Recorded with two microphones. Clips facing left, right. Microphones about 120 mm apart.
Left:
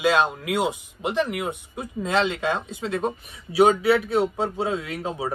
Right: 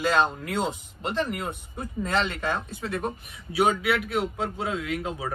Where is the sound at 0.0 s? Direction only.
15° left (ahead or behind).